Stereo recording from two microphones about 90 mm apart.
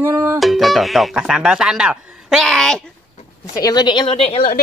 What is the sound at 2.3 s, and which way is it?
Speech, 5° left (ahead or behind).